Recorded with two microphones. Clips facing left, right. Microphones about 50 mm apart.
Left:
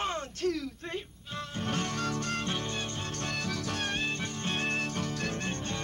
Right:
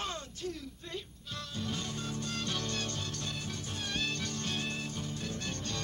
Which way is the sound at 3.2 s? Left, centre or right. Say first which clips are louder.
Left 7 dB; left.